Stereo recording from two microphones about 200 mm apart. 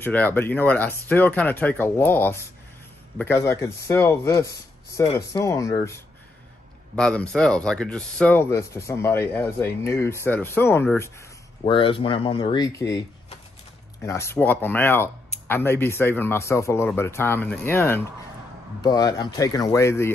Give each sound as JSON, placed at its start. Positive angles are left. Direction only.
{"t": 0.0, "sound": "speech", "side_deg": 10}
{"t": 7.0, "sound": "speech", "side_deg": 5}
{"t": 11.6, "sound": "speech", "side_deg": 25}
{"t": 14.0, "sound": "speech", "side_deg": 15}